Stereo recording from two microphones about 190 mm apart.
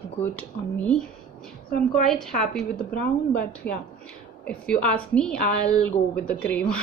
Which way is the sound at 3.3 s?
5° left (ahead or behind).